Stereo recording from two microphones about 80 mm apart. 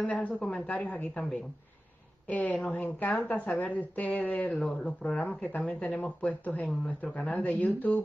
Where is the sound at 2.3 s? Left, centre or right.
Centre.